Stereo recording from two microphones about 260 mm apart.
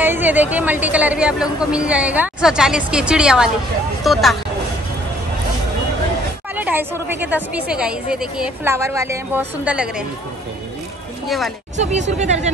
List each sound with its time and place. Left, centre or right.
0.0 s speech: centre
6.5 s a woman's voice: centre
11.2 s speech: centre
11.7 s speech: right